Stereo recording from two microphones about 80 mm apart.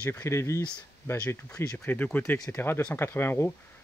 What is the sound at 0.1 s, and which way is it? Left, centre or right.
Speech, left.